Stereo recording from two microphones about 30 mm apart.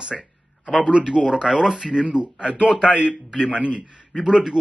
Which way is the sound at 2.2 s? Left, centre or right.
Right.